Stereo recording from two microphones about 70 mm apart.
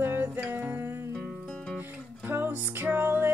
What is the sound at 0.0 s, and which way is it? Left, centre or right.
Music, right.